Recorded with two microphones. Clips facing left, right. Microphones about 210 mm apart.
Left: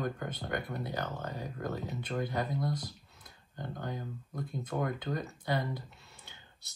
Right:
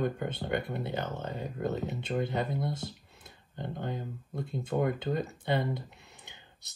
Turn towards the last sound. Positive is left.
turn(degrees=-20)  # may be behind; listen again after turning